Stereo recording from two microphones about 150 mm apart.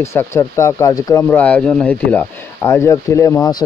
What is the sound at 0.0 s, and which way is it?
Speech, 20° left (ahead or behind).